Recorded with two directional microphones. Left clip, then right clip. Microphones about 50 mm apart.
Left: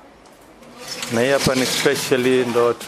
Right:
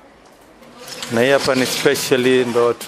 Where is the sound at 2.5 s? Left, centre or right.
Right.